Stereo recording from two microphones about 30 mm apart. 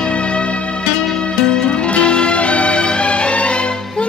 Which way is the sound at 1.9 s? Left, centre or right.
Left.